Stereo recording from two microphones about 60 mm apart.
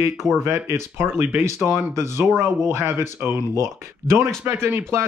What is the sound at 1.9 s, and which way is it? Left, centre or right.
Speech, right.